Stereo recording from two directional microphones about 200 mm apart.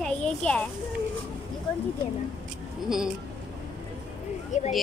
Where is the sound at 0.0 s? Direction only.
5° left (ahead or behind).